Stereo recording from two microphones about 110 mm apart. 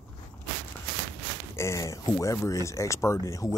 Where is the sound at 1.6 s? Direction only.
25° left (ahead or behind).